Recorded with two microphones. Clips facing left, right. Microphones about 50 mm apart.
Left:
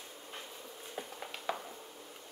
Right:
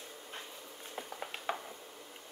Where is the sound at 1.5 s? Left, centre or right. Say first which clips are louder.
Even; right.